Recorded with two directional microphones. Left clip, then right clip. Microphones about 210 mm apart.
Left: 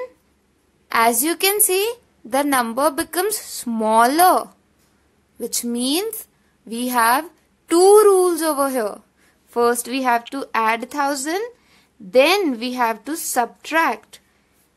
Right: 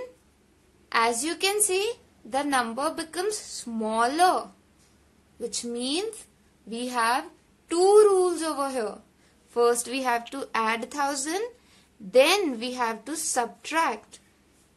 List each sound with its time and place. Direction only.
0.8 s a woman's voice: 40° left (ahead or behind)